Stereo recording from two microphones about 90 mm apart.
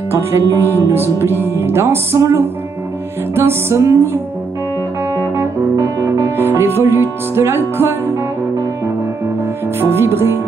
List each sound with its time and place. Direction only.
0.1 s speech: 30° right (ahead or behind)
1.1 s music: 25° right (ahead or behind)
6.3 s music: 25° right (ahead or behind)
9.8 s music: 25° right (ahead or behind)